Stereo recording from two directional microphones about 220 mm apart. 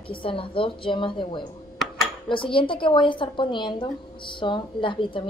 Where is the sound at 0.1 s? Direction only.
25° left (ahead or behind).